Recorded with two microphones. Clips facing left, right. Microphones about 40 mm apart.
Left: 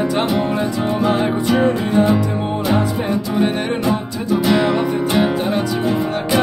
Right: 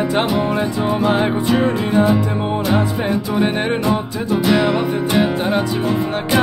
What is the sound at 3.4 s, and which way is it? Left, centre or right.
Music, centre.